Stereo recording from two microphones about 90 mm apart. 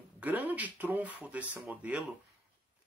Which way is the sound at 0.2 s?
20° right (ahead or behind).